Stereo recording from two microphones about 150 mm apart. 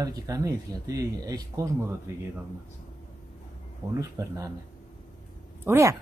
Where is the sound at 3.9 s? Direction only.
20° right (ahead or behind).